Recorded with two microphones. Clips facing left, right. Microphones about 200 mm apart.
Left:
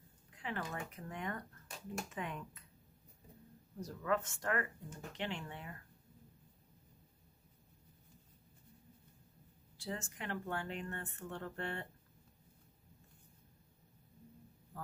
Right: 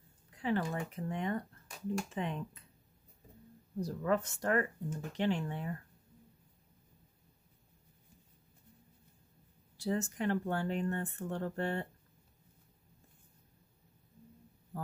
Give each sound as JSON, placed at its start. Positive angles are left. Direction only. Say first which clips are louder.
{"t": 0.4, "sound": "speech", "louder": "right 8 dB", "side_deg": -30}
{"t": 3.8, "sound": "speech", "louder": "right 4 dB", "side_deg": -35}
{"t": 9.8, "sound": "speech", "louder": "right 10 dB", "side_deg": -40}